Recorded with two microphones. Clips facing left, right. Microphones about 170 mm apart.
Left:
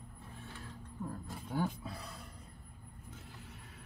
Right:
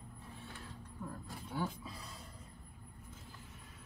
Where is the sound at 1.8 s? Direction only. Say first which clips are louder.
Left 4 dB; 60° left (ahead or behind).